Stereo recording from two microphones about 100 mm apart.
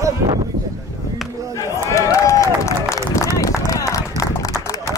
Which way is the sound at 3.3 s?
35° left (ahead or behind).